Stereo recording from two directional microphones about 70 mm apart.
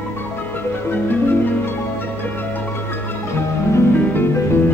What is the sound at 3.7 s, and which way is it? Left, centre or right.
Music, left.